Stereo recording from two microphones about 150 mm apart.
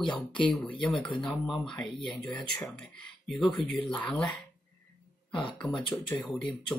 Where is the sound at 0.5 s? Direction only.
10° left (ahead or behind).